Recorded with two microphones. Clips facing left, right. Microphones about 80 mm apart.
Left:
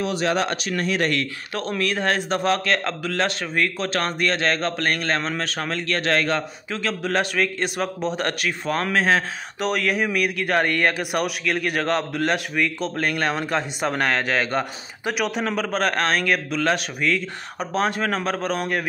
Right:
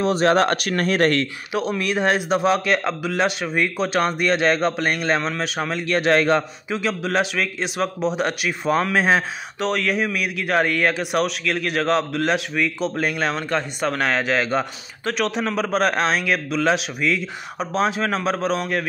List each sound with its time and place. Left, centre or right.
0.0 s speech: right
1.5 s a man's voice: centre
6.8 s speech: centre
8.9 s a man's voice: centre
9.6 s speech: centre
13.3 s speech: centre